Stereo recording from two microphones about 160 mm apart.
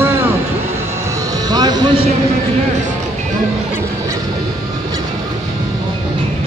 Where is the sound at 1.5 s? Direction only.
25° right (ahead or behind).